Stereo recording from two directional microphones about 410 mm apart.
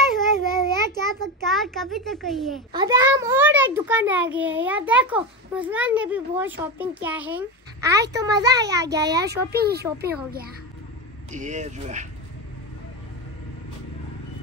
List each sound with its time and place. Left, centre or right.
0.5 s a sound: centre
2.7 s a child's voice: centre
9.2 s a child's voice: right